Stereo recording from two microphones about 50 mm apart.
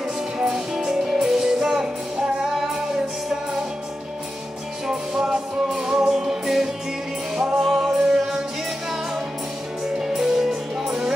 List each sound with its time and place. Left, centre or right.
0.4 s music: centre
4.8 s music: centre
7.3 s music: centre
9.8 s music: centre